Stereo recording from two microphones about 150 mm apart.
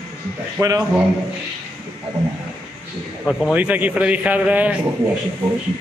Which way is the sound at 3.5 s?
10° right (ahead or behind).